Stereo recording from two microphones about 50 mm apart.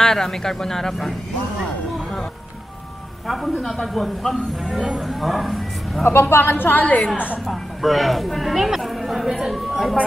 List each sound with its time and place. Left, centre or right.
0.0 s speech: centre
3.3 s speech: centre
6.0 s a woman's voice: left
7.4 s speech: centre